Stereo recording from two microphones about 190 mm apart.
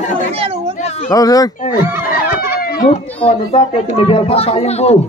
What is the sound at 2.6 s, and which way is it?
Children playing, 45° left (ahead or behind).